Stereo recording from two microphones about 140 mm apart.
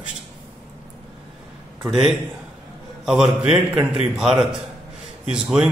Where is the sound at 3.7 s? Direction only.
5° right (ahead or behind).